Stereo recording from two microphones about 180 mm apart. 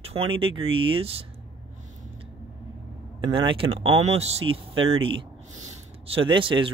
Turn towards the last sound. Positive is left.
turn(degrees=-30)  # may be behind; listen again after turning